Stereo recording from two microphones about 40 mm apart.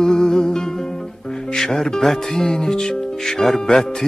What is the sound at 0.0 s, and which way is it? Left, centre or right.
Music, centre.